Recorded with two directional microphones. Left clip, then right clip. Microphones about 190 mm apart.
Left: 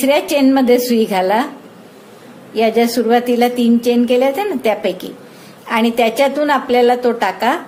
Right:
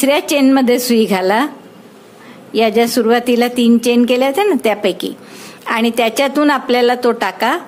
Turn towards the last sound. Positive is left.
turn(degrees=-30)  # may be behind; listen again after turning